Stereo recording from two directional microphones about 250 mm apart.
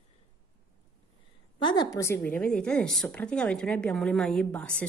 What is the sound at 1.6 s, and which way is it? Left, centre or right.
A woman's voice, centre.